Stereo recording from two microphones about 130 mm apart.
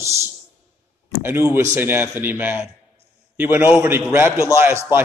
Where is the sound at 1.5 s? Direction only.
15° right (ahead or behind).